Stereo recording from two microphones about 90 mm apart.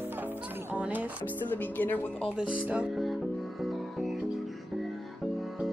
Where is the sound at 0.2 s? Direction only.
15° right (ahead or behind).